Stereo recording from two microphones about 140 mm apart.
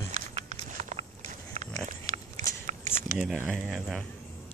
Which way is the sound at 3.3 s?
Centre (ahead or behind).